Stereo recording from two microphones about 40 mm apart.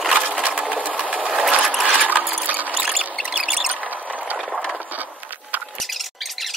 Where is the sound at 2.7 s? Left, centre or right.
Centre.